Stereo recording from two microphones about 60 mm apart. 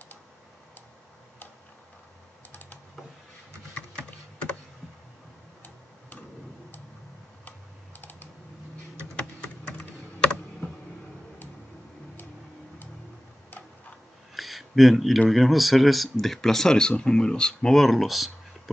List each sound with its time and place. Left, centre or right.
2.5 s typing: left
3.9 s typing: centre
7.4 s computer keyboard: left
9.1 s typing: centre
14.3 s speech: centre